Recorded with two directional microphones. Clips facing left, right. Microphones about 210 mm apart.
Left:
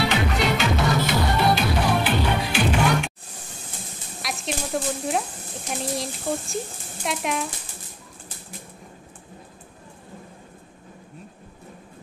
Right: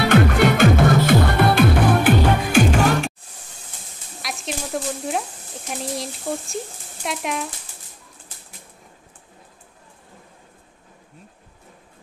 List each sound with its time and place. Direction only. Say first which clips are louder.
0.0 s music: right 7 dB; 55° right (ahead or behind)
4.2 s sizzle: even; centre (ahead or behind)
5.7 s speech: even; centre (ahead or behind)